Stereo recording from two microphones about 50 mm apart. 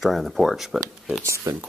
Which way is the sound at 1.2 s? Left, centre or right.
Right.